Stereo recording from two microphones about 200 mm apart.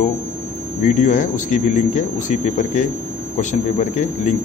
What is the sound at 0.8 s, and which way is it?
A man's voice, 40° left (ahead or behind).